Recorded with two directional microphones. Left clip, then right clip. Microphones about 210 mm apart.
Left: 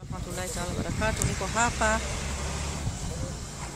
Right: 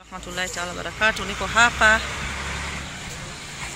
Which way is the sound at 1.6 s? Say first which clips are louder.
Right 10 dB; centre (ahead or behind).